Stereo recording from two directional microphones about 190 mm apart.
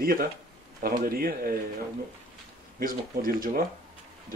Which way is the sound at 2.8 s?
50° right (ahead or behind).